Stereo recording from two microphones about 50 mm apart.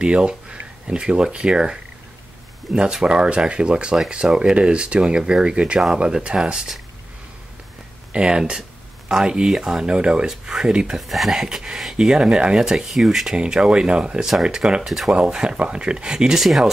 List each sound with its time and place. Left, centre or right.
0.0 s speech: centre
8.1 s speech: centre
11.0 s speech: centre
13.4 s speech: centre
16.4 s speech: centre